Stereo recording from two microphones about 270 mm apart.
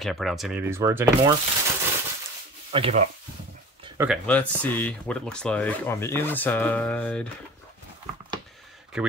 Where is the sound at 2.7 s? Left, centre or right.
Right.